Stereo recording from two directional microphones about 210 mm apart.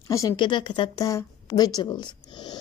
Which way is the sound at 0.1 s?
15° left (ahead or behind).